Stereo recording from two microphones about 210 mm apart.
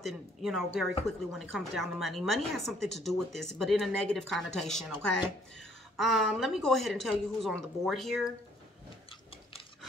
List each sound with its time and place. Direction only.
0.0 s a woman's voice: centre (ahead or behind)